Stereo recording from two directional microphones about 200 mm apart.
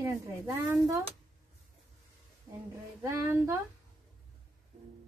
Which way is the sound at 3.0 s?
15° right (ahead or behind).